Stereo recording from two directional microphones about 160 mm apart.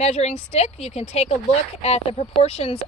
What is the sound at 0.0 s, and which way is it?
A woman's voice, 40° left (ahead or behind).